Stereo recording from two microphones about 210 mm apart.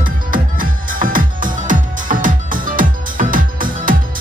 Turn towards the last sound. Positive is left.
turn(degrees=-40)  # may be behind; listen again after turning